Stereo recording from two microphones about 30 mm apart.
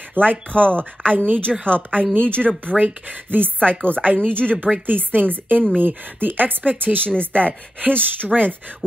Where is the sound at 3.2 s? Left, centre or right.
Right.